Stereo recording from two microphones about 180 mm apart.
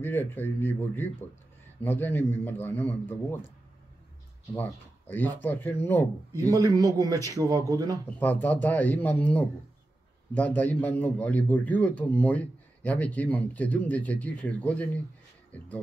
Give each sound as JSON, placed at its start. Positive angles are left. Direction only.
{"t": 0.0, "sound": "a man's voice", "side_deg": 10}
{"t": 4.6, "sound": "a man's voice", "side_deg": 10}
{"t": 6.3, "sound": "speech", "side_deg": -20}
{"t": 8.0, "sound": "a man's voice", "side_deg": 10}